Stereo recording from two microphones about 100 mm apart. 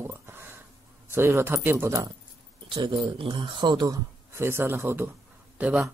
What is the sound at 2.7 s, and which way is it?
Speech, 60° right (ahead or behind).